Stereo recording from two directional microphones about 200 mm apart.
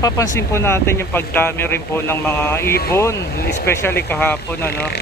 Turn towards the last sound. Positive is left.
turn(degrees=10)  # may be behind; listen again after turning